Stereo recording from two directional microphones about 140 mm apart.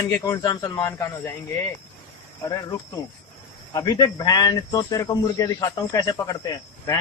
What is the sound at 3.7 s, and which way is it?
Speech, 25° left (ahead or behind).